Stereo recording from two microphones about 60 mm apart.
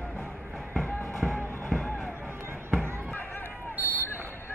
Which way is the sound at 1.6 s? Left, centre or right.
Centre.